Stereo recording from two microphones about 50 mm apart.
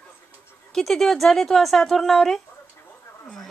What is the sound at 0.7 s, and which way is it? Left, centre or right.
Speech, centre.